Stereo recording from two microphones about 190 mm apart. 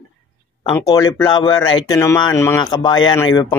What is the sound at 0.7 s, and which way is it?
Speech, 20° left (ahead or behind).